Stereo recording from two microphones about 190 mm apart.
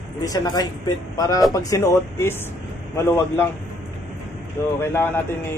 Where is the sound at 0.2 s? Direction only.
20° left (ahead or behind).